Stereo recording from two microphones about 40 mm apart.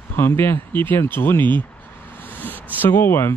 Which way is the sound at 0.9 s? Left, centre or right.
Left.